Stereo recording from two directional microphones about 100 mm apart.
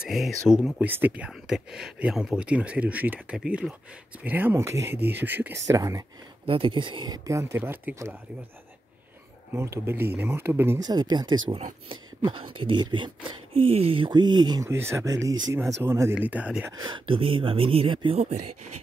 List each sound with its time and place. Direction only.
0.0 s speech: 5° right (ahead or behind)
1.3 s speech: 5° right (ahead or behind)
5.7 s speech: 35° right (ahead or behind)
6.4 s speech: 65° right (ahead or behind)
7.2 s speech: 25° right (ahead or behind)
9.5 s speech: 25° right (ahead or behind)
10.9 s speech: 45° right (ahead or behind)
11.5 s speech: 60° right (ahead or behind)
13.7 s speech: 75° right (ahead or behind); by 14.7 s 45° right (ahead or behind)
14.7 s speech: 25° right (ahead or behind)
16.2 s speech: 15° right (ahead or behind)
16.7 s speech: 50° right (ahead or behind)